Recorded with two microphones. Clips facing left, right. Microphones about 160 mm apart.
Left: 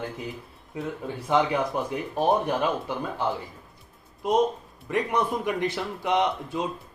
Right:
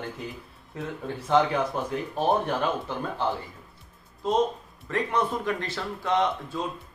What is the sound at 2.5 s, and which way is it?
Speech, 10° left (ahead or behind).